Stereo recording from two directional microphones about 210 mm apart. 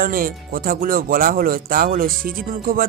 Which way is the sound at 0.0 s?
45° right (ahead or behind).